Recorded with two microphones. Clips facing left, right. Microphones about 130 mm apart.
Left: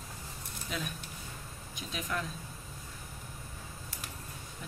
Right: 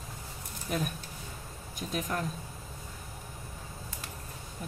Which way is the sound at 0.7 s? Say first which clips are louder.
Right 6 dB; 50° right (ahead or behind).